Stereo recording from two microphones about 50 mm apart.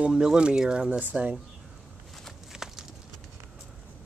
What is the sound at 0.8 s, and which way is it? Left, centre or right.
Speech, right.